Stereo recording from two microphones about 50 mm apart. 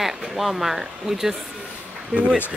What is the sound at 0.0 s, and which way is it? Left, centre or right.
Speech, centre.